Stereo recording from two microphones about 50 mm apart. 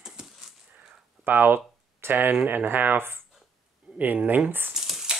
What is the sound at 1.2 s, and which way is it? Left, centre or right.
Speech, right.